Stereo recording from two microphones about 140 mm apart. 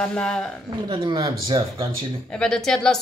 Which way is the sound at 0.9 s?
30° right (ahead or behind).